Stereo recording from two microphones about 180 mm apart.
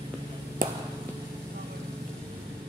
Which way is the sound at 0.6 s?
50° right (ahead or behind).